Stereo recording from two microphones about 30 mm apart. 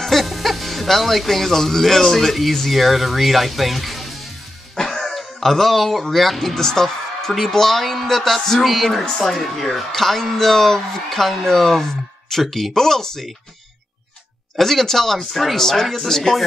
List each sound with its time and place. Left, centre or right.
0.0 s speech: centre
4.7 s music: centre
5.1 s speech: centre
6.5 s a woman's voice: centre
12.4 s speech: centre
12.7 s speech: centre
14.6 s speech: centre